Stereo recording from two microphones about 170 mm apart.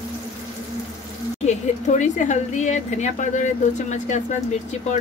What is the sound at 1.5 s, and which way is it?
Speech, 45° left (ahead or behind).